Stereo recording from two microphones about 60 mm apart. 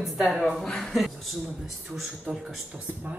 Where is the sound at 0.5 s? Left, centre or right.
Centre.